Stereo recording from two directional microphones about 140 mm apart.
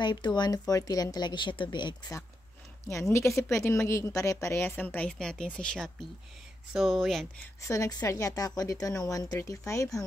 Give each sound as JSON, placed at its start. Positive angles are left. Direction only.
{"t": 0.0, "sound": "a woman's voice", "side_deg": 35}
{"t": 2.9, "sound": "a woman's voice", "side_deg": 20}
{"t": 7.6, "sound": "a woman's voice", "side_deg": 25}